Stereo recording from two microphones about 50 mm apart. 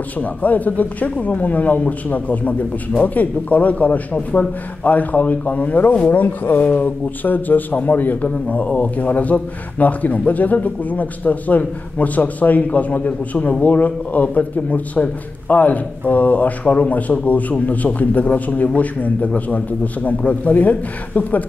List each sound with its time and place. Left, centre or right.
0.2 s speech: left